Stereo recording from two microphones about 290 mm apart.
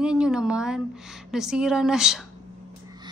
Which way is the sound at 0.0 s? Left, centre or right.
Centre.